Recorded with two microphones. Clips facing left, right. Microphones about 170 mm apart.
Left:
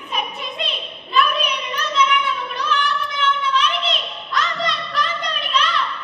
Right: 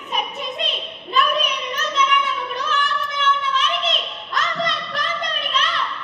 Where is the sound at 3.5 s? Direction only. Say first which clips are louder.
Left 1 dB; 45° right (ahead or behind).